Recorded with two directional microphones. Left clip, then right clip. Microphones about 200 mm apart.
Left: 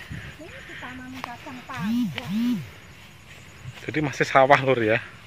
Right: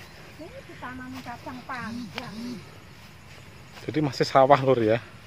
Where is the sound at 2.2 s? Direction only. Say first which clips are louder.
Left 2 dB; 5° right (ahead or behind).